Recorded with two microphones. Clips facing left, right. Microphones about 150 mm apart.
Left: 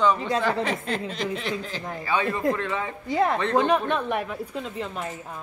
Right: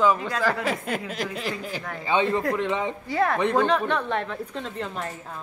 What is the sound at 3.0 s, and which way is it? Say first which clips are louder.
A woman's voice: left 1 dB; 20° left (ahead or behind).